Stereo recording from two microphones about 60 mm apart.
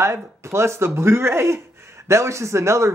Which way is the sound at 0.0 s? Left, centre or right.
Right.